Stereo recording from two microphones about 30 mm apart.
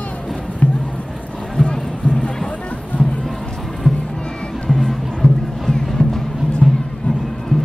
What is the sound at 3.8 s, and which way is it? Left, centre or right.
Music, left.